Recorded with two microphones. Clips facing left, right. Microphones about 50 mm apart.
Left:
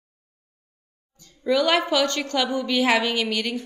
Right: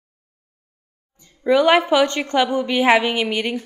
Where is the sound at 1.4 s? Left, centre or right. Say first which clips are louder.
Right 6 dB; right.